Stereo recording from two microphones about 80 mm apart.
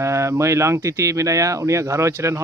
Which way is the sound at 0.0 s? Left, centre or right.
Right.